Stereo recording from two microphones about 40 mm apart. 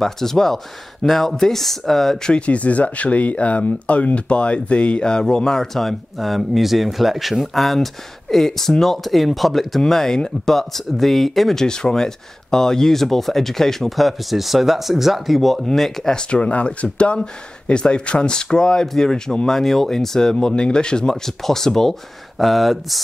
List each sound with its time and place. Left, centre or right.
0.0 s speech: centre
2.2 s speech: left
5.8 s speech: centre
11.6 s speech: centre
16.1 s speech: left
20.3 s speech: left
21.3 s speech: centre
22.4 s speech: centre